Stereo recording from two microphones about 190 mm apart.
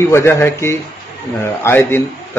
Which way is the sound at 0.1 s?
15° left (ahead or behind).